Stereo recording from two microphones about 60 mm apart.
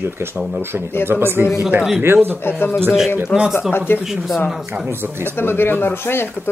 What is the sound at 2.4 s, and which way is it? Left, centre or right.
Speech, left.